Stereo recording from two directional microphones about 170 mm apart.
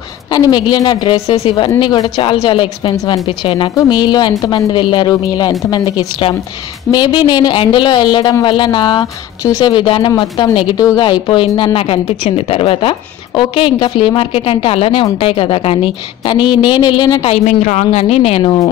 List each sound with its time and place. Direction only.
0.3 s a woman's voice: 25° left (ahead or behind)
17.5 s speech: 45° left (ahead or behind)
18.4 s a woman's voice: 25° left (ahead or behind)